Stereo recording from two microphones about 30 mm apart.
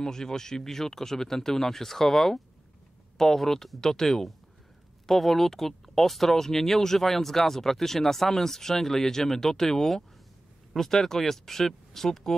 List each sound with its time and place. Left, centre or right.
0.0 s speech: centre